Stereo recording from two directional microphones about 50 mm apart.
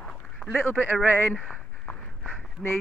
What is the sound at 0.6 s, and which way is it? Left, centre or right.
Speech, left.